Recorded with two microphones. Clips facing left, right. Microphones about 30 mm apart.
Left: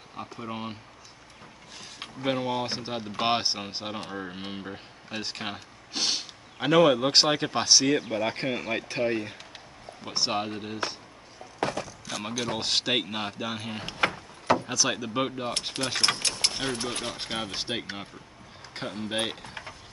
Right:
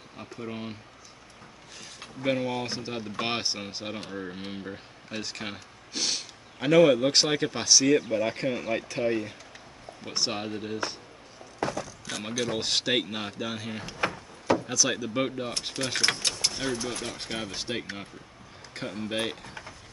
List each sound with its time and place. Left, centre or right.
0.1 s speech: centre
2.2 s speech: centre
8.8 s speech: left
10.0 s speech: centre
11.6 s a sound: left
12.1 s speech: centre
13.8 s speech: left
14.7 s speech: centre
15.8 s speech: centre
16.4 s a sound: left
17.0 s speech: left
19.4 s typing: left